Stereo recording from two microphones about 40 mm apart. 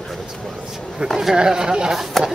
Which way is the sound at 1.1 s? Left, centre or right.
Centre.